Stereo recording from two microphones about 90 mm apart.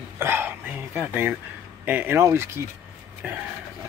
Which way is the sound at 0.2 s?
25° right (ahead or behind).